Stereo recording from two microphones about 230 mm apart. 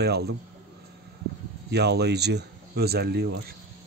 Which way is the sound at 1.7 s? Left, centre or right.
Right.